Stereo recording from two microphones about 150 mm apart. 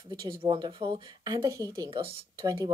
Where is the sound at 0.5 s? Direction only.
30° right (ahead or behind).